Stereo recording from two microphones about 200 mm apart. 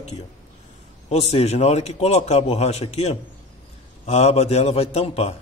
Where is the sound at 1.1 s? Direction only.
30° left (ahead or behind).